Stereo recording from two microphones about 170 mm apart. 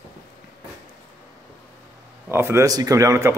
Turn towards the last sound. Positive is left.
turn(degrees=-20)  # may be behind; listen again after turning